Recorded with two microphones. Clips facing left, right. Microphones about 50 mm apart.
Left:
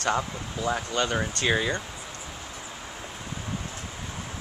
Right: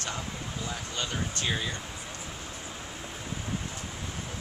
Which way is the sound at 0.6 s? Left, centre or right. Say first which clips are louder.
Left 11 dB; left.